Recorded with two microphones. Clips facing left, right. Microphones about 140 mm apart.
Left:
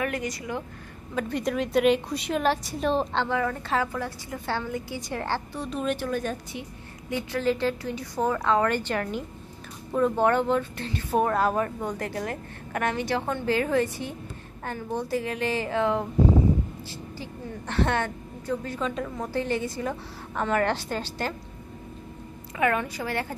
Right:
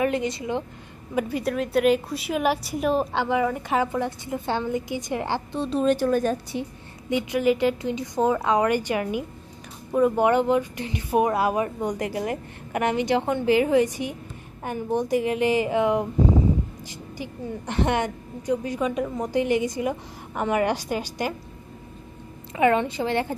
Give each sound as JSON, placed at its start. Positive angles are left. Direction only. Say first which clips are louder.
{"t": 0.0, "sound": "a woman's voice", "louder": "right 5 dB", "side_deg": -25}
{"t": 1.1, "sound": "a woman's voice", "louder": "right 2 dB", "side_deg": -5}
{"t": 7.1, "sound": "a woman's voice", "louder": "right 5 dB", "side_deg": -15}
{"t": 17.2, "sound": "a woman's voice", "louder": "right 7 dB", "side_deg": -15}
{"t": 22.6, "sound": "a woman's voice", "louder": "right 5 dB", "side_deg": -25}